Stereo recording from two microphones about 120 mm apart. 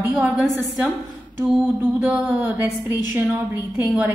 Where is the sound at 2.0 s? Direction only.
15° right (ahead or behind).